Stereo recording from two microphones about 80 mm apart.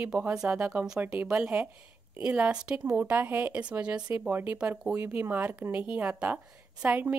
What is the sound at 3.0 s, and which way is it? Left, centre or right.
A woman's voice, right.